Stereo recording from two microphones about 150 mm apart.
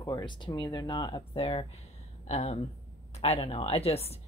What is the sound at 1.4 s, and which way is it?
A woman's voice, 40° left (ahead or behind).